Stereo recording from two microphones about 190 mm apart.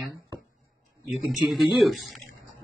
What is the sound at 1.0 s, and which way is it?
Speech, centre (ahead or behind).